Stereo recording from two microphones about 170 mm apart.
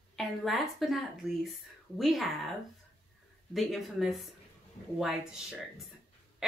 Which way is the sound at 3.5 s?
Centre (ahead or behind).